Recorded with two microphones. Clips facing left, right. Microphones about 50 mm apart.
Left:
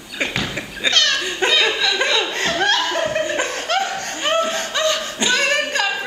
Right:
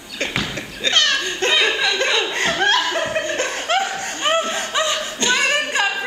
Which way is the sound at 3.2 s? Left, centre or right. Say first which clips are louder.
Left 2 dB; centre.